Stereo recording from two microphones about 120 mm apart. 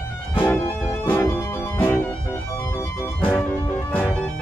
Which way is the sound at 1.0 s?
20° left (ahead or behind).